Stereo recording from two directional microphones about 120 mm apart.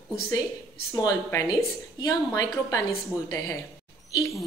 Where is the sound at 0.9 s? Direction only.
30° left (ahead or behind).